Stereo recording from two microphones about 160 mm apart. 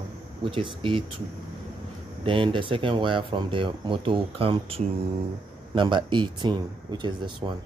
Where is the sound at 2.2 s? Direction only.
35° right (ahead or behind).